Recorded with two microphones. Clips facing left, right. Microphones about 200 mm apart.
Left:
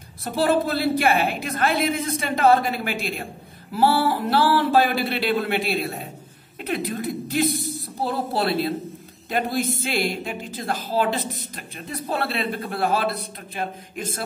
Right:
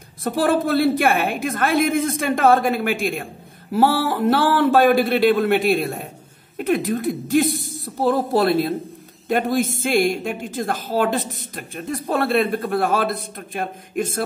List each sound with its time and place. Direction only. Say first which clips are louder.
0.2 s a woman's voice: right 2 dB; 50° right (ahead or behind)